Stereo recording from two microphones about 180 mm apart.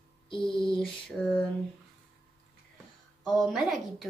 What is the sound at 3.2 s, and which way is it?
Speech, centre (ahead or behind).